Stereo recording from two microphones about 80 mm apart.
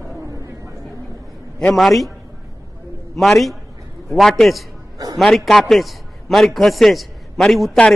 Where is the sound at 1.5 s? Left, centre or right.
Centre.